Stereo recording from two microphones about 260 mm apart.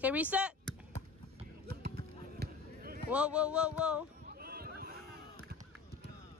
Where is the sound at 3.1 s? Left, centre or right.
Centre.